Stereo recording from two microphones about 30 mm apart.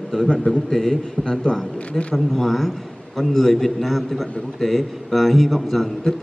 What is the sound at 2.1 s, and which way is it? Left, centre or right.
A man's voice, centre.